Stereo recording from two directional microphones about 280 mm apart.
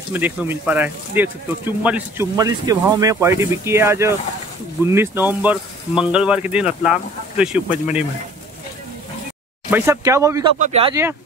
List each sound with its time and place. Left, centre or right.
0.1 s speech: centre
9.7 s speech: centre
10.6 s speech: right